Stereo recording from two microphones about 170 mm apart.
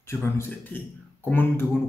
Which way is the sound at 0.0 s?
15° left (ahead or behind).